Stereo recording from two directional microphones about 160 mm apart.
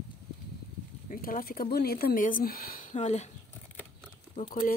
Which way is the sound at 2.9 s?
45° left (ahead or behind).